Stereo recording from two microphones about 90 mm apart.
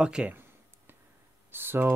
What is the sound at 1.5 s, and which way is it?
Speech, 25° right (ahead or behind).